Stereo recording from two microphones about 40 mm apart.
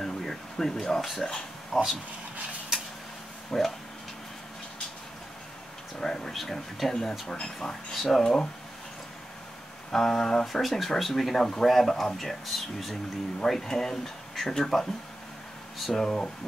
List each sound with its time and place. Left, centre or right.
0.0 s a sound: centre
1.7 s speech: centre
3.5 s speech: centre
5.9 s speech: centre
7.5 s speech: centre
8.2 s speech: centre
9.9 s speech: centre
16.0 s speech: centre